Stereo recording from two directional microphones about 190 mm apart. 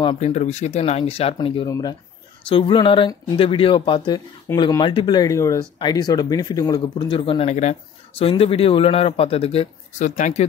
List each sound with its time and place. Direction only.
0.2 s a man's voice: 40° left (ahead or behind)